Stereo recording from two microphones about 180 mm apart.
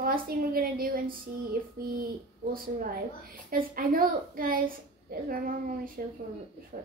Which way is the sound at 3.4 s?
50° right (ahead or behind).